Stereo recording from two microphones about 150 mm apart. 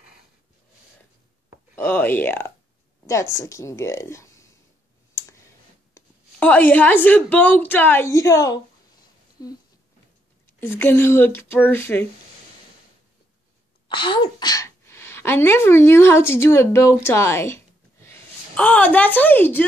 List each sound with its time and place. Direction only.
1.8 s a woman's voice: 15° left (ahead or behind)
5.9 s a woman's voice: 10° left (ahead or behind)
10.6 s a woman's voice: 15° left (ahead or behind)
13.8 s a woman's voice: 35° left (ahead or behind); by 19.6 s 10° left (ahead or behind)